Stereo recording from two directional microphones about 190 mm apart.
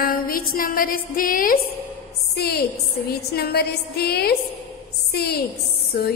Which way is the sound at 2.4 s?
55° left (ahead or behind).